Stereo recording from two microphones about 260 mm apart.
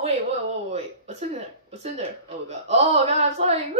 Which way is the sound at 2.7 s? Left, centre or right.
Right.